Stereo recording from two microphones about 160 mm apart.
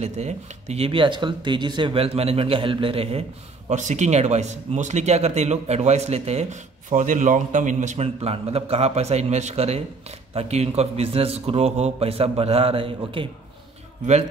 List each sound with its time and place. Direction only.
0.0 s a man's voice: 45° right (ahead or behind)